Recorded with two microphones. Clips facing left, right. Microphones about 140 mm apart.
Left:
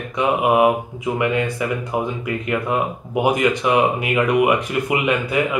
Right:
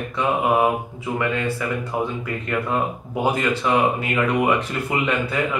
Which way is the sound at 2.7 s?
15° left (ahead or behind).